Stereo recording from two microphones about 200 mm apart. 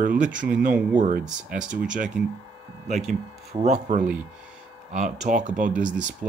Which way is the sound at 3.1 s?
35° right (ahead or behind).